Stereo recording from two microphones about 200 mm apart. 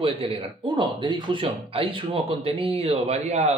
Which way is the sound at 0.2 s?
25° right (ahead or behind).